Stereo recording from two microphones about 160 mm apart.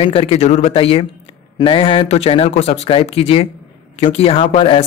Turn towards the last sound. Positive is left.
turn(degrees=35)  # may be behind; listen again after turning